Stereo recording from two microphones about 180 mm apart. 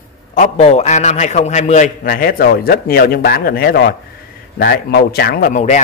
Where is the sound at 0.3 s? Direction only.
40° left (ahead or behind).